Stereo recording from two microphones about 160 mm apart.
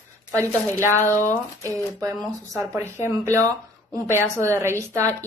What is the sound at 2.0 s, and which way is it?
A woman's voice, 20° right (ahead or behind).